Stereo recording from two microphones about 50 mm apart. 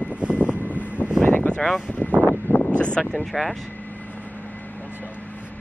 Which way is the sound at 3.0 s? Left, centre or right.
Centre.